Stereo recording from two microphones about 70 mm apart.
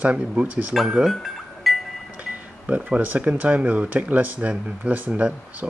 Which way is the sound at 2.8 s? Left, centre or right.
Centre.